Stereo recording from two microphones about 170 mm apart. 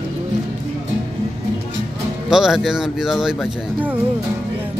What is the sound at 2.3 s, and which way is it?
Speech, 5° right (ahead or behind).